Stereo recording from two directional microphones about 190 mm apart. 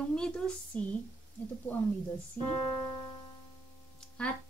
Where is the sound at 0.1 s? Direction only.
5° left (ahead or behind).